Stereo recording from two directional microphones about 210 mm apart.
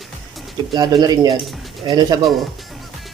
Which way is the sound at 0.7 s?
20° right (ahead or behind).